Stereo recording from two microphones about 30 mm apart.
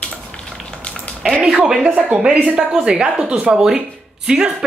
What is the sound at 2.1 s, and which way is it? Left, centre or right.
Speech, right.